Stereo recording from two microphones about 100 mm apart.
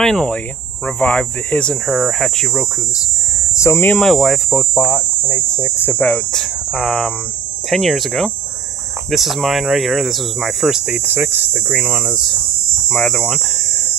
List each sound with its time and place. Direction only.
0.0 s speech: 5° left (ahead or behind)
1.9 s speech: centre (ahead or behind)
3.5 s hum: 25° left (ahead or behind)
4.0 s speech: centre (ahead or behind)
4.7 s speech: 20° left (ahead or behind)
6.3 s speech: centre (ahead or behind)
10.9 s speech: 20° right (ahead or behind)
12.9 s cricket: 5° left (ahead or behind)